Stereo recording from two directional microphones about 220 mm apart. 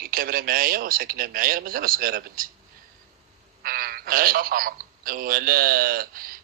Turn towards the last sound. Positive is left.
turn(degrees=-40)  # may be behind; listen again after turning